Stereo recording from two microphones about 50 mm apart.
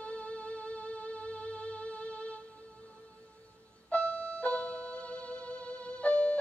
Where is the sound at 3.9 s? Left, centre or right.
Left.